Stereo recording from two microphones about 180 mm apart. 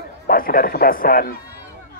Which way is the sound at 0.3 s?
55° left (ahead or behind).